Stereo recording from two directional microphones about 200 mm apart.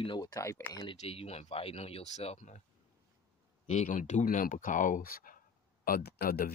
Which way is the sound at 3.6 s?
40° left (ahead or behind).